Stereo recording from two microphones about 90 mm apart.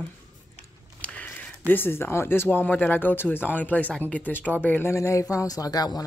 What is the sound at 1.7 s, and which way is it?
Speech, 25° left (ahead or behind).